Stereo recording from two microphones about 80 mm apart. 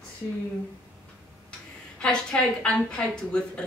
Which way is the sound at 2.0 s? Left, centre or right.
Centre.